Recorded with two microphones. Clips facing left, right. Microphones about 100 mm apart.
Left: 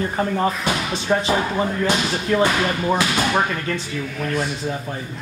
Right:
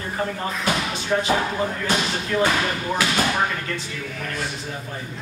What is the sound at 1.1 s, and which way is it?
Speech, 40° left (ahead or behind).